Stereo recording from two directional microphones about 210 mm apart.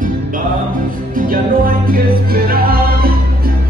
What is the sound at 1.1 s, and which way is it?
Music, 40° right (ahead or behind).